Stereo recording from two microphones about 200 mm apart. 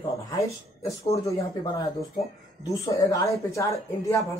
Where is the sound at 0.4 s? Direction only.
15° left (ahead or behind).